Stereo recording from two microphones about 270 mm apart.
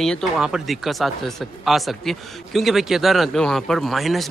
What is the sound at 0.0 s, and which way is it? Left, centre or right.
Speech, centre.